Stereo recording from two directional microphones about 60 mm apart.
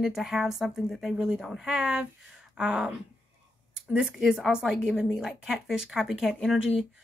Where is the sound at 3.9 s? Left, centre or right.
Centre.